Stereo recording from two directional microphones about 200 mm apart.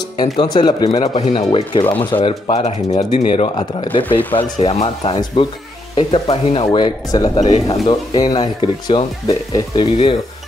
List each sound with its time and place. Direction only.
0.2 s speech: 20° left (ahead or behind)
0.9 s speech: 30° left (ahead or behind)